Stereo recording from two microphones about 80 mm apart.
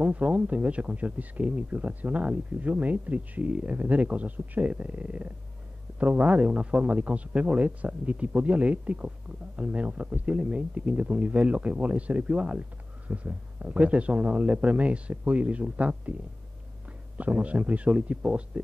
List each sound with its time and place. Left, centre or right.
0.0 s speech: centre
17.2 s speech: centre